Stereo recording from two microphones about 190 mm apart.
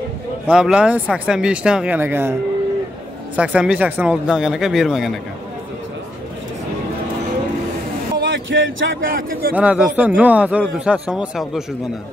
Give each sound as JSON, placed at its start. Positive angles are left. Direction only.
{"t": 0.5, "sound": "speech", "side_deg": -5}
{"t": 3.3, "sound": "speech", "side_deg": -5}
{"t": 8.2, "sound": "a sound", "side_deg": -80}
{"t": 9.0, "sound": "a man's voice", "side_deg": -50}
{"t": 9.5, "sound": "a man's voice", "side_deg": -5}